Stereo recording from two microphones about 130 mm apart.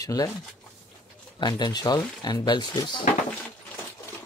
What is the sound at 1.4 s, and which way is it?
Speech, 35° left (ahead or behind).